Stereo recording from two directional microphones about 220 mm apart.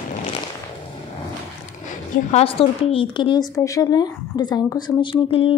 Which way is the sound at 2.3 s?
25° left (ahead or behind).